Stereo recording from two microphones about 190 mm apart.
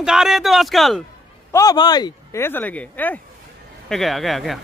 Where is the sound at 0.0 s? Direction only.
5° right (ahead or behind).